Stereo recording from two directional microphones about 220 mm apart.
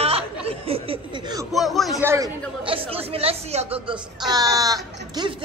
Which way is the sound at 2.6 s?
25° right (ahead or behind).